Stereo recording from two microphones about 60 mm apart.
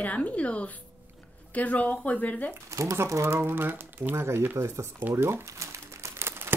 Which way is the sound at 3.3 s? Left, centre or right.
Right.